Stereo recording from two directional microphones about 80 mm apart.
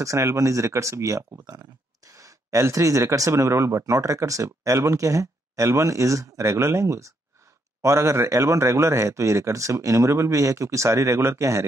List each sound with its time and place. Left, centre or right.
0.0 s speech: right